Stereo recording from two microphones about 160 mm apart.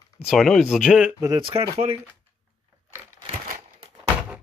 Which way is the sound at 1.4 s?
35° right (ahead or behind).